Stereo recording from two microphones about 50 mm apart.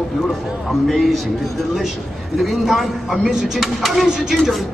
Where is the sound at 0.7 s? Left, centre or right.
Centre.